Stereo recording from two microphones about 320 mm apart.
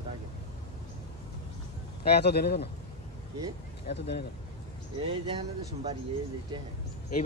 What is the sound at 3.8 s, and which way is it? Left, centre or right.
Speech, left.